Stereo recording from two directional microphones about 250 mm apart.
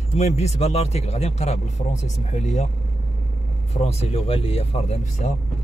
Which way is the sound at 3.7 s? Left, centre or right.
Left.